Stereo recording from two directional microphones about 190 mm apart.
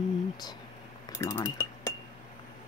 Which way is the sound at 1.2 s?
15° left (ahead or behind).